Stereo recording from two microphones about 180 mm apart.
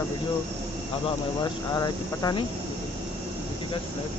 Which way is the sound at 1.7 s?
20° left (ahead or behind).